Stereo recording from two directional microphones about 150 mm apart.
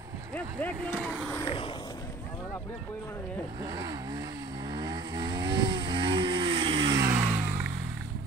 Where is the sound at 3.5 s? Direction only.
25° right (ahead or behind).